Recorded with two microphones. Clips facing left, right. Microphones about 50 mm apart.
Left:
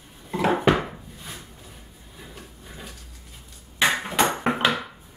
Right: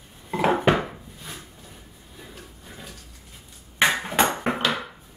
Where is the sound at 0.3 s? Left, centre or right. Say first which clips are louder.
Right 1 dB; centre.